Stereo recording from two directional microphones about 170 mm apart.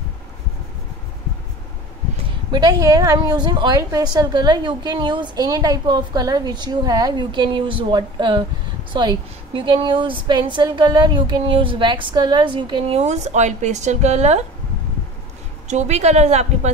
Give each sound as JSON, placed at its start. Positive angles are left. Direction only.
{"t": 2.5, "sound": "a woman's voice", "side_deg": -20}
{"t": 13.0, "sound": "speech", "side_deg": -40}
{"t": 15.7, "sound": "speech", "side_deg": -40}